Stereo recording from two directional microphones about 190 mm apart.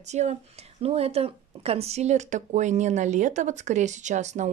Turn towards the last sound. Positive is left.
turn(degrees=-40)  # may be behind; listen again after turning